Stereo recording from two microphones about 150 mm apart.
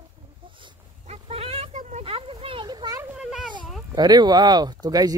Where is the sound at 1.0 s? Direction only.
45° right (ahead or behind).